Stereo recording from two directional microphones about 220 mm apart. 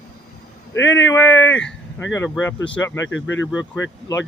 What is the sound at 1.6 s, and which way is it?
Speech, 60° left (ahead or behind).